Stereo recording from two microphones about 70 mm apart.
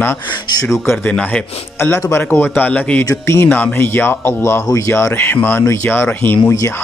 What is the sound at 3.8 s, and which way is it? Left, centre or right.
A man's voice, left.